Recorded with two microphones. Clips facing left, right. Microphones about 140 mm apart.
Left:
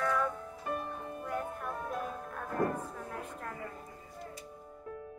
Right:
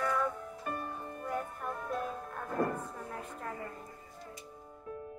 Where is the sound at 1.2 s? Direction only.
Centre (ahead or behind).